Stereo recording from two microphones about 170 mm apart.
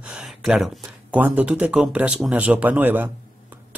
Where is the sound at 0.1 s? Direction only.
5° right (ahead or behind).